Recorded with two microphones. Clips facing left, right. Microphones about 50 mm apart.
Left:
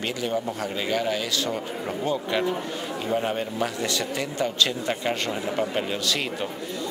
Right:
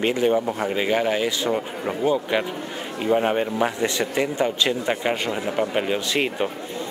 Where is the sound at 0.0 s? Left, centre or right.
Right.